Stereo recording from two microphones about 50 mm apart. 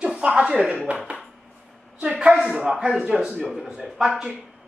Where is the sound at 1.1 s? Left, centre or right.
Right.